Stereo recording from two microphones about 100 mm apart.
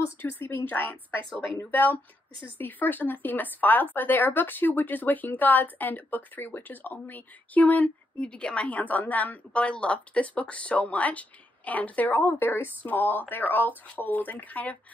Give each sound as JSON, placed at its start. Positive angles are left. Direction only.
{"t": 0.0, "sound": "a woman's voice", "side_deg": 20}